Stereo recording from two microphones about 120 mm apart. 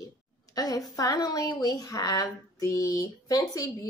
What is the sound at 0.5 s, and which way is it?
A woman's voice, 30° left (ahead or behind).